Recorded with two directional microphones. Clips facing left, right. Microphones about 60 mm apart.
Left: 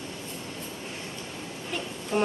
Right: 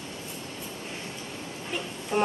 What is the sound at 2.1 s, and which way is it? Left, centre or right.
Insect, centre.